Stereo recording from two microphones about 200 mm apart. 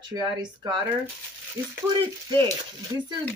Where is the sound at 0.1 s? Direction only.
20° right (ahead or behind).